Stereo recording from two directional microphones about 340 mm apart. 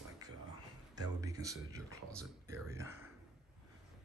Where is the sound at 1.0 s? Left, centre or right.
Centre.